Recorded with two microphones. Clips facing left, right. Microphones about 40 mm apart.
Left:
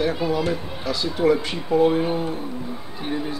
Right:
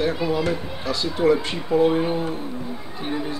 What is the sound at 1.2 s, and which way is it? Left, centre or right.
Speech, centre.